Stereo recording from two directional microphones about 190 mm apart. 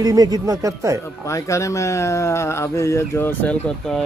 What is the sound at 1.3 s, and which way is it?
Speech, 15° left (ahead or behind).